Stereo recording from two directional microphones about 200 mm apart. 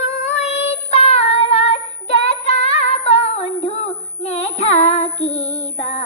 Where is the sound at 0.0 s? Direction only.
35° left (ahead or behind).